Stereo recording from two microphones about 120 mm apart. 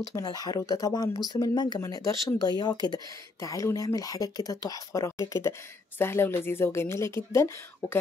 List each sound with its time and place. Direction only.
0.1 s speech: 30° left (ahead or behind)